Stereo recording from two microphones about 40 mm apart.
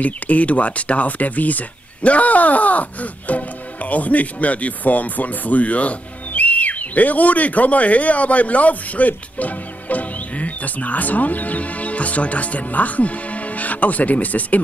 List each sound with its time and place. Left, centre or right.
0.0 s speech: left